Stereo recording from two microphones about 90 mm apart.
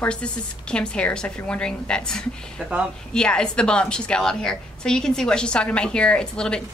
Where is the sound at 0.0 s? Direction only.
10° left (ahead or behind).